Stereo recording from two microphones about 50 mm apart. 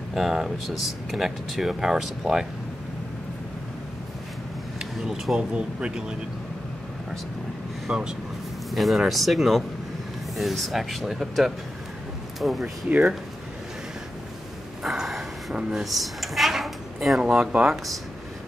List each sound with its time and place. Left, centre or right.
0.1 s speech: centre
4.9 s speech: centre
5.5 s speech: right
7.9 s speech: centre
8.7 s speech: centre
14.8 s a sound: centre
15.7 s speech: centre
17.2 s speech: centre